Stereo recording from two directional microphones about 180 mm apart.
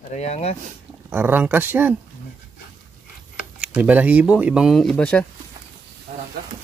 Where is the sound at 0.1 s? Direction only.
35° left (ahead or behind).